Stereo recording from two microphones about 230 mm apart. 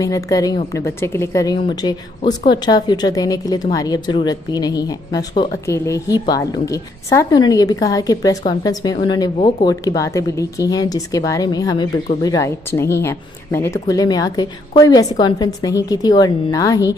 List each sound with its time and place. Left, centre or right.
0.0 s a woman's voice: centre